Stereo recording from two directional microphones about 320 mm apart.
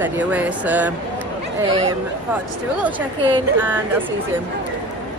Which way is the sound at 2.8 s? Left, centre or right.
Centre.